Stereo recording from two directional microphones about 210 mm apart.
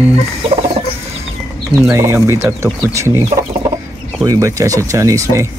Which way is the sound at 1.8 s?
15° right (ahead or behind).